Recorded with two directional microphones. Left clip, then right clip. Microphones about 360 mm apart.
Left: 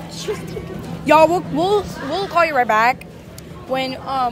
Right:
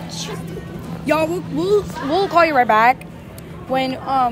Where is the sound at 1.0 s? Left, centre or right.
Centre.